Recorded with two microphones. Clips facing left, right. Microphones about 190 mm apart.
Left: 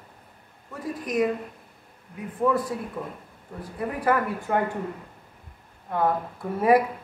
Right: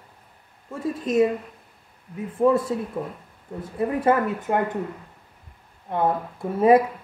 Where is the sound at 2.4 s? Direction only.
25° right (ahead or behind).